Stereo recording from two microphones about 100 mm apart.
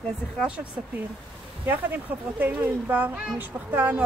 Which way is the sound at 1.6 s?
20° right (ahead or behind).